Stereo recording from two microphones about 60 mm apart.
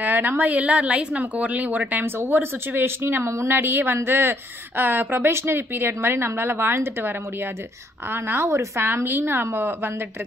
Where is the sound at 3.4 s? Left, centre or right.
Right.